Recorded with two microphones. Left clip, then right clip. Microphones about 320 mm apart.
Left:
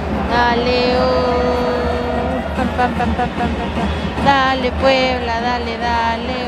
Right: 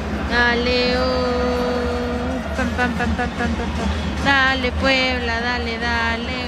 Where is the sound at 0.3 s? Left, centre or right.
Centre.